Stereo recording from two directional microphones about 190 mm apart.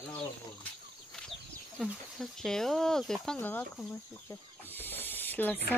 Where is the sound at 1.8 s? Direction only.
Centre (ahead or behind).